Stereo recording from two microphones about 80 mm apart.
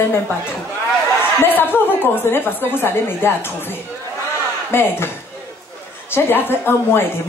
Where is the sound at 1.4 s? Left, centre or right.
Left.